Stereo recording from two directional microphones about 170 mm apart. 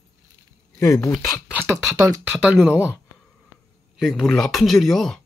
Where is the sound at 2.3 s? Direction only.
5° right (ahead or behind).